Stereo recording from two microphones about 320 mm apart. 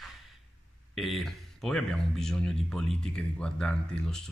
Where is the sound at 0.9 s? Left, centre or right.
Centre.